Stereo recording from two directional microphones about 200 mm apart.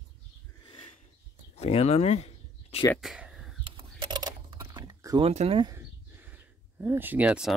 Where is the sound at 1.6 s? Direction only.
30° left (ahead or behind).